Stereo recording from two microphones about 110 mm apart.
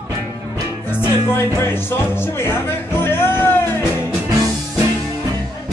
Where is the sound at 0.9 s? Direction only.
20° left (ahead or behind).